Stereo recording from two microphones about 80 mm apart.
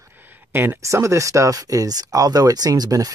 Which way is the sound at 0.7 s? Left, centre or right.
Right.